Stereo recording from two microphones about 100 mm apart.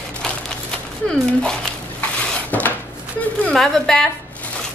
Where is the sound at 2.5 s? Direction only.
15° left (ahead or behind).